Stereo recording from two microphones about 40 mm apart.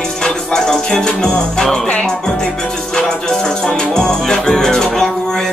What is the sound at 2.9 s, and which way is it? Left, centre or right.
Music, centre.